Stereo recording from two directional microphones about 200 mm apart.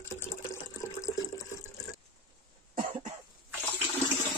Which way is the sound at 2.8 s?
35° right (ahead or behind).